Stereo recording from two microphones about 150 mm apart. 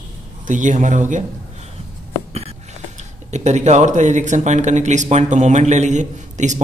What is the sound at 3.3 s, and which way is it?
Speech, 50° right (ahead or behind).